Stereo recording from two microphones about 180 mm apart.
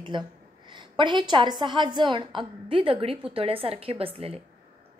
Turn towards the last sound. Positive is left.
turn(degrees=-30)  # may be behind; listen again after turning